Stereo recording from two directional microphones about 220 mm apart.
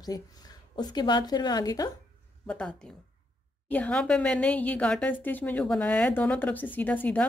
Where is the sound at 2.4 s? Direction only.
5° left (ahead or behind).